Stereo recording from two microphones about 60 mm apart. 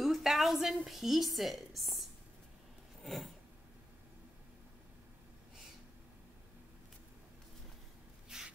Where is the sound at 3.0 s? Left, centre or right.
Centre.